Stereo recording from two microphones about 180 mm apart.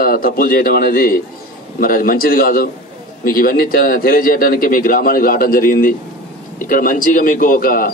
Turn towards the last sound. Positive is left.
turn(degrees=55)  # may be behind; listen again after turning